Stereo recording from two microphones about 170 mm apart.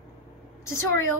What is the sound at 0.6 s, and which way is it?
Speech, 15° left (ahead or behind).